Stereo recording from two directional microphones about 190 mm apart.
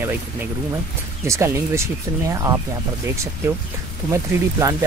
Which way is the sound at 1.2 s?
15° right (ahead or behind).